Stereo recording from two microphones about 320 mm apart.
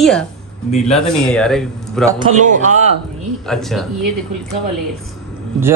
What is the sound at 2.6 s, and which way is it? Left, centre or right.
Speech, right.